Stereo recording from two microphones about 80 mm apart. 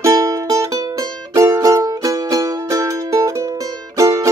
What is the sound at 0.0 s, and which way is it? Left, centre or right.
Music, right.